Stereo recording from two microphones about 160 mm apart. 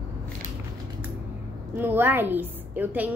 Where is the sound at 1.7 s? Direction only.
15° right (ahead or behind).